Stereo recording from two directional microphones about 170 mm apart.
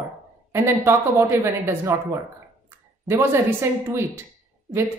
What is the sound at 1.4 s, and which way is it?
A woman's voice, 15° right (ahead or behind).